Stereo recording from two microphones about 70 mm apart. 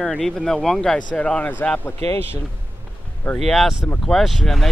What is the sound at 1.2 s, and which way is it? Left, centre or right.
Speech, centre.